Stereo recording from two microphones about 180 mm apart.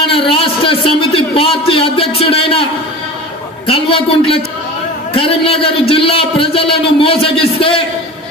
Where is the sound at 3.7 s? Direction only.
30° left (ahead or behind).